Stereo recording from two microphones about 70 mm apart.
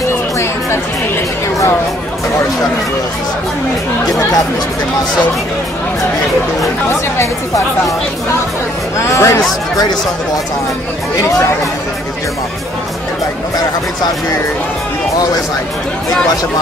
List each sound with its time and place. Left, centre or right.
8.9 s speech: left